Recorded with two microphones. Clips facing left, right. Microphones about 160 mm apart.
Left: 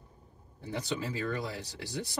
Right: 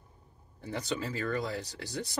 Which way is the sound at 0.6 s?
15° left (ahead or behind).